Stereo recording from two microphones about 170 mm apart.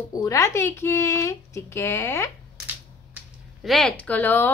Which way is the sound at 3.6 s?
Centre (ahead or behind).